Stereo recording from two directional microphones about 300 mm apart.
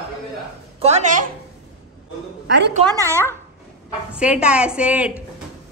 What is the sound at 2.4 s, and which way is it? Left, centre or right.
Speech, right.